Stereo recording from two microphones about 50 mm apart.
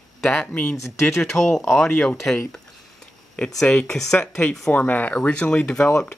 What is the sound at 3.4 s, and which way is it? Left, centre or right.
Speech, centre.